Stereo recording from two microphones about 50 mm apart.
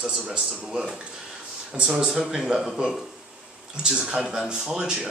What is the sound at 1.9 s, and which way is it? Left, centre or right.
Speech, centre.